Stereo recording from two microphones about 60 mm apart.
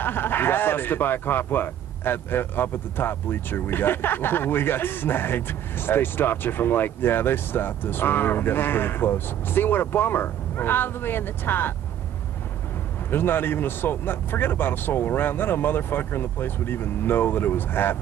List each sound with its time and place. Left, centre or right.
0.0 s speech: left
13.1 s speech: left